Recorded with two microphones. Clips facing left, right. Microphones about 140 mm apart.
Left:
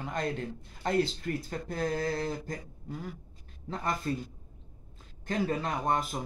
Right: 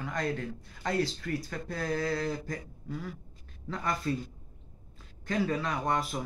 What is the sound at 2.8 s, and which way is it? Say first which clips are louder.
Speech: right 2 dB; 45° left (ahead or behind).